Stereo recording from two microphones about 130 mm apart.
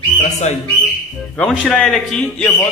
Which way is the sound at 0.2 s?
60° left (ahead or behind).